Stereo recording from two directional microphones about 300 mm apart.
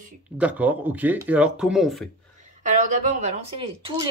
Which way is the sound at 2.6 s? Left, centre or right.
Right.